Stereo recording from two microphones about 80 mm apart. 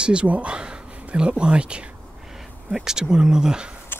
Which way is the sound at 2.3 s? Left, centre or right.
Centre.